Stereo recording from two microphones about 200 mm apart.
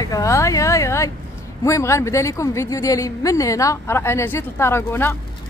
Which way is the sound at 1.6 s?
15° left (ahead or behind).